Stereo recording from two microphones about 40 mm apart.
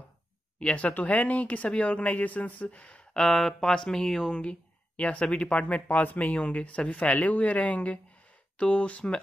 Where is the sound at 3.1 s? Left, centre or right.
Centre.